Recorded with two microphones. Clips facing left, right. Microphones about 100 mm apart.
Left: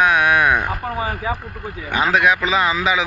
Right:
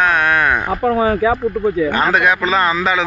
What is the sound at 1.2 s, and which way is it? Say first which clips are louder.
Speech: right 9 dB; 90° right.